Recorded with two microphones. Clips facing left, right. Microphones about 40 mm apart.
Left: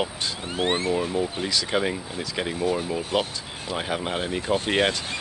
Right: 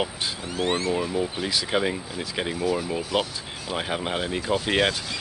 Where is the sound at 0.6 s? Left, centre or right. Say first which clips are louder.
Left 1 dB; left.